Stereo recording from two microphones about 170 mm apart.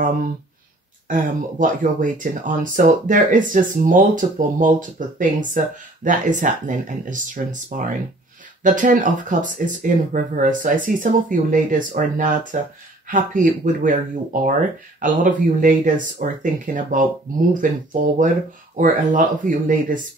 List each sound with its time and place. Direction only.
1.0 s speech: 50° right (ahead or behind)